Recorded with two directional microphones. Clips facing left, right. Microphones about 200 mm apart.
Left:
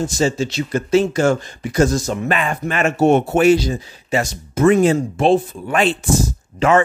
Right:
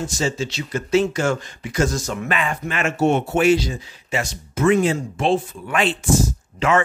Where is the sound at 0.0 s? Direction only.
40° left (ahead or behind).